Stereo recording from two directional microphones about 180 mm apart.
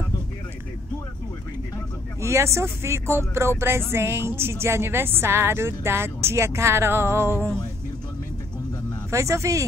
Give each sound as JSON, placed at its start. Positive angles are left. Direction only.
{"t": 2.2, "sound": "speech", "side_deg": -15}
{"t": 9.1, "sound": "speech", "side_deg": -15}